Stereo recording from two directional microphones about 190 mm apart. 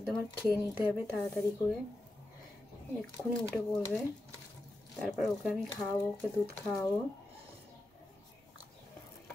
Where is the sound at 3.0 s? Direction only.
5° left (ahead or behind).